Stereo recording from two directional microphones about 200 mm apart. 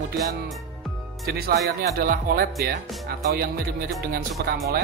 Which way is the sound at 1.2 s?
50° right (ahead or behind).